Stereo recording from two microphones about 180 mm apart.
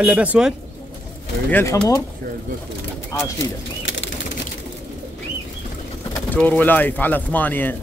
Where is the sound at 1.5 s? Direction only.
15° left (ahead or behind).